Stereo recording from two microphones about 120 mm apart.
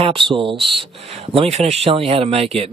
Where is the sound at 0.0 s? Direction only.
45° right (ahead or behind).